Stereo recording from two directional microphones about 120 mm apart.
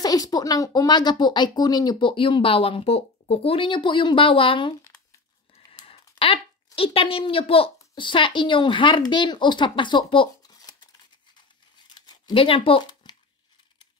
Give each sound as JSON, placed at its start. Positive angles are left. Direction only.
{"t": 0.0, "sound": "speech", "side_deg": 30}
{"t": 5.9, "sound": "speech", "side_deg": 50}
{"t": 11.9, "sound": "speech", "side_deg": 35}